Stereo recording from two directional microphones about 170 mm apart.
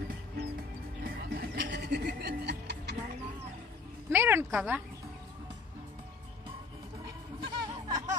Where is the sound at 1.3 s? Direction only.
80° right.